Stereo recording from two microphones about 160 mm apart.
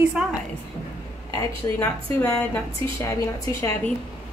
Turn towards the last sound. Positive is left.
turn(degrees=20)  # may be behind; listen again after turning